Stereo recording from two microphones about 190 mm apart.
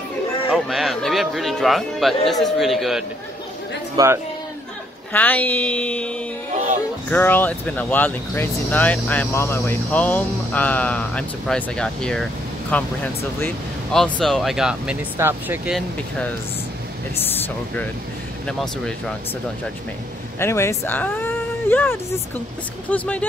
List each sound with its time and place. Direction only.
0.5 s a man's voice: centre (ahead or behind)
3.9 s speech: 15° right (ahead or behind)
5.1 s speech: 10° left (ahead or behind)
14.2 s speech: centre (ahead or behind)
17.2 s speech: 10° left (ahead or behind)
20.3 s speech: 15° left (ahead or behind)